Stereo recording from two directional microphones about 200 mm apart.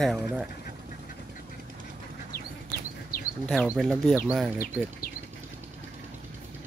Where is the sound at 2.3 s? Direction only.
45° left (ahead or behind).